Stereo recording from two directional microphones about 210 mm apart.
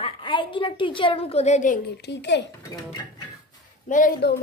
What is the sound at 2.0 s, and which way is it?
Speech, 55° left (ahead or behind).